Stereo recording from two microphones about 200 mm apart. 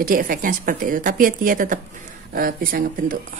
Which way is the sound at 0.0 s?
45° right (ahead or behind).